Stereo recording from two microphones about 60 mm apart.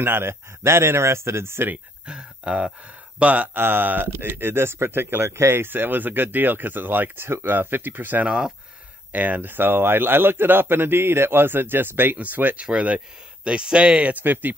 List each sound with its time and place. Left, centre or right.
0.0 s speech: right
2.0 s speech: centre
3.5 s speech: right
8.3 s speech: centre
9.1 s speech: right
14.2 s speech: right